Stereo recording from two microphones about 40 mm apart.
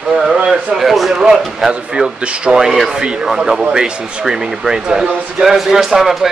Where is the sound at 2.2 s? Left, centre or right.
Right.